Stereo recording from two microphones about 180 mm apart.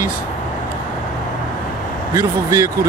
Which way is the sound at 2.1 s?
15° right (ahead or behind).